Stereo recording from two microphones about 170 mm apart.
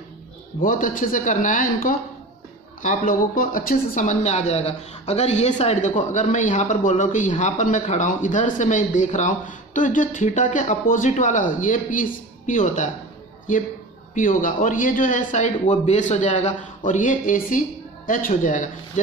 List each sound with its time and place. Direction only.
0.6 s speech: 55° left (ahead or behind)
14.1 s speech: 50° left (ahead or behind)